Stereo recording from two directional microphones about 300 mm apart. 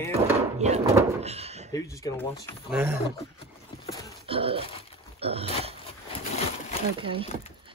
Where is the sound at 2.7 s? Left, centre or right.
Centre.